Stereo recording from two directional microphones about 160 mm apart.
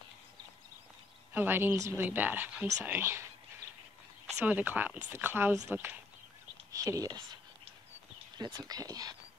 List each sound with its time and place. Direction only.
1.3 s a woman's voice: 10° right (ahead or behind)
4.5 s a woman's voice: 10° right (ahead or behind)
8.4 s speech: 25° right (ahead or behind)